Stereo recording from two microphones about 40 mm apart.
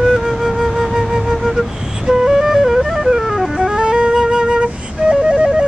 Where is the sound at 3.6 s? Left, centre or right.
Centre.